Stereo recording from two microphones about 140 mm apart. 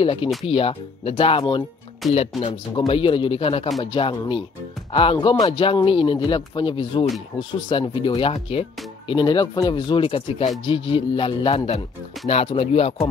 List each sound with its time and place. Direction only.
0.0 s speech: 40° left (ahead or behind)
2.0 s speech: centre (ahead or behind)
2.9 s speech: 40° left (ahead or behind)